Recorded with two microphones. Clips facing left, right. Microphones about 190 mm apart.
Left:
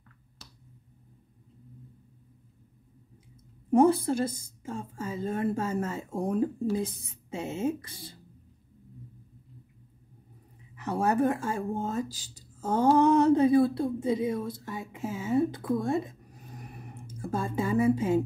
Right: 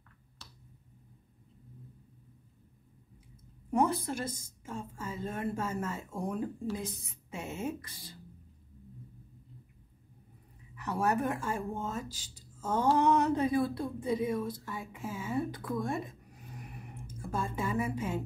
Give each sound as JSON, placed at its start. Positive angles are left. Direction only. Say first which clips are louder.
{"t": 3.7, "sound": "a woman's voice", "louder": "left 8 dB", "side_deg": 30}
{"t": 10.9, "sound": "speech", "louder": "left 5 dB", "side_deg": 30}
{"t": 16.5, "sound": "a sound", "louder": "left 3 dB", "side_deg": 40}